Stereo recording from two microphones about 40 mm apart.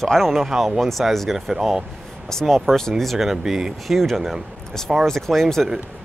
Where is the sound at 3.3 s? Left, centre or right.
Centre.